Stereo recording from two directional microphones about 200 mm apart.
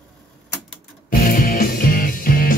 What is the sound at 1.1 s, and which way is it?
Music, 45° left (ahead or behind).